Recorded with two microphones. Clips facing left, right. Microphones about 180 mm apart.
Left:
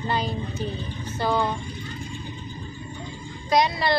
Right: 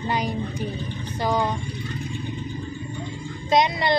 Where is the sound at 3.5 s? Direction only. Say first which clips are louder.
Right 1 dB; 20° right (ahead or behind).